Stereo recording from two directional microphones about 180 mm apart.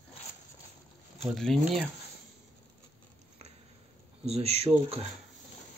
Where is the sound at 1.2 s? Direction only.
Centre (ahead or behind).